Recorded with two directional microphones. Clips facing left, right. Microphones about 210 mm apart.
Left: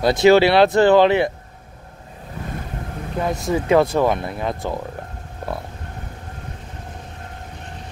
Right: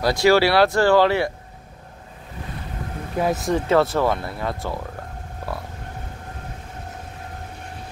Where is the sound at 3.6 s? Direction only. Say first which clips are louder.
Left 3 dB; 15° left (ahead or behind).